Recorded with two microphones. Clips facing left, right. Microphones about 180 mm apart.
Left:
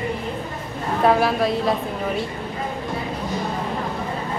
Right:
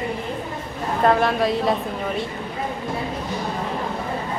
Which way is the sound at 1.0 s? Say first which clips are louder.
Even; 5° left (ahead or behind).